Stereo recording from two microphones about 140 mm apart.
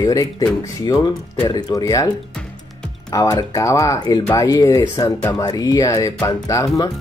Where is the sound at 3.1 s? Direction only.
25° left (ahead or behind).